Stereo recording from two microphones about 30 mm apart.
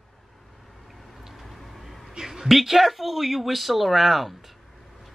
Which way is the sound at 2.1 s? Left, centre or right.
Right.